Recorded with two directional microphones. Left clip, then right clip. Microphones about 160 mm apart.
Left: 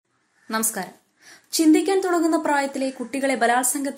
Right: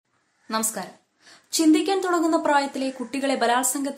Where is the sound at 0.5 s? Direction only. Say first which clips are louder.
Left 1 dB; 20° left (ahead or behind).